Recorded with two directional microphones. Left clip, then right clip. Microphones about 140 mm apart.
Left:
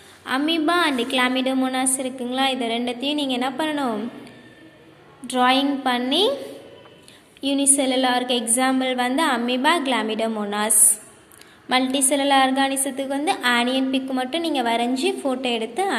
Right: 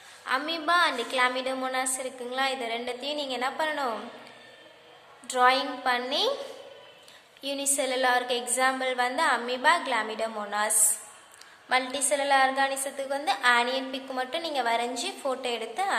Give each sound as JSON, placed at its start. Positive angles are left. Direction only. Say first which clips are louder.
{"t": 0.2, "sound": "a woman's voice", "louder": "left 7 dB", "side_deg": 15}
{"t": 5.2, "sound": "a woman's voice", "louder": "left 4 dB", "side_deg": 15}
{"t": 7.4, "sound": "a woman's voice", "louder": "left 8 dB", "side_deg": 5}
{"t": 11.7, "sound": "a woman's voice", "louder": "left 6 dB", "side_deg": 15}